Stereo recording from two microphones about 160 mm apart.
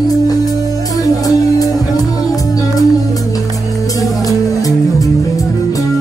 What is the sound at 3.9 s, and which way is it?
Music, 20° left (ahead or behind).